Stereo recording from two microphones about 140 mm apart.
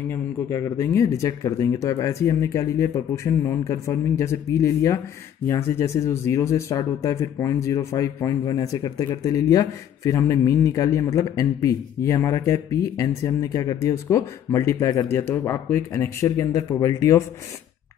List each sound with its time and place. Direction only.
0.1 s speech: 20° left (ahead or behind)